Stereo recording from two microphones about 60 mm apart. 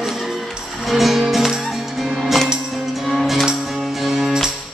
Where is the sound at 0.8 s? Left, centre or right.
Centre.